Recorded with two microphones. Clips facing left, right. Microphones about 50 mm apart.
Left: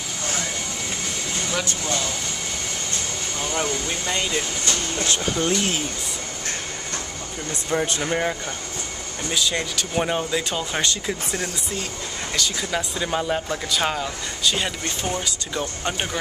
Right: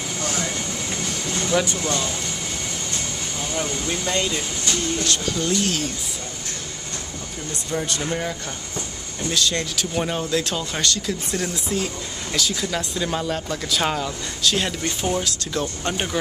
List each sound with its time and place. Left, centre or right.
1.5 s speech: centre
3.8 s speech: centre; by 5.3 s left
5.3 s speech: left
7.7 s speech: left
9.3 s speech: centre
11.4 s speech: centre
12.5 s speech: centre
13.7 s speech: centre